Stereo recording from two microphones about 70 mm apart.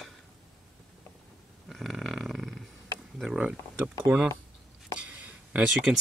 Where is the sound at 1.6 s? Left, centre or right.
Centre.